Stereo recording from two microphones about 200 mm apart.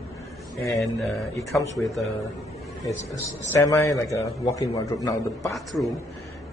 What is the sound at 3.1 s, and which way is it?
A man's voice, 15° left (ahead or behind).